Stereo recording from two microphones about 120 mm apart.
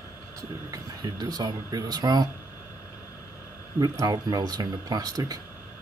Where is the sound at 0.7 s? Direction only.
35° right (ahead or behind).